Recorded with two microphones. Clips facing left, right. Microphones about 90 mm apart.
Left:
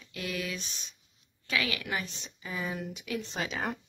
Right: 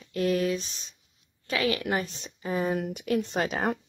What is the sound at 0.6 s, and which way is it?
Speech, 5° left (ahead or behind).